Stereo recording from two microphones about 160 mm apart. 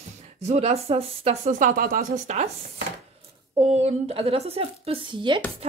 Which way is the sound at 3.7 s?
40° right (ahead or behind).